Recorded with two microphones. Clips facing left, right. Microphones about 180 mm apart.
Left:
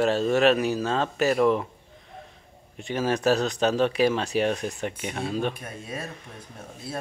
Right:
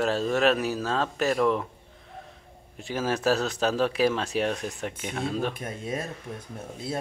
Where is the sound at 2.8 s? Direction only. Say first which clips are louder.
Left 2 dB; centre (ahead or behind).